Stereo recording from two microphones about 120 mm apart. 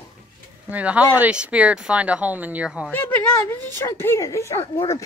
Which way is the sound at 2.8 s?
15° left (ahead or behind).